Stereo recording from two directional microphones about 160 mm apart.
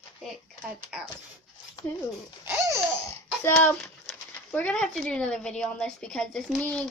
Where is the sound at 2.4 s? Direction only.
15° right (ahead or behind).